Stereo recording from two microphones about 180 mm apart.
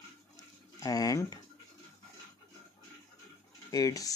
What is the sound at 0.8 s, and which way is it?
Speech, 20° left (ahead or behind).